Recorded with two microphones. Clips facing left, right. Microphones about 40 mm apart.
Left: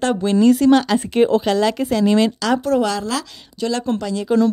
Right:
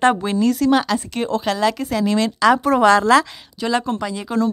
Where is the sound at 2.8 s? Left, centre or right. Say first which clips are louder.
Right 9 dB; right.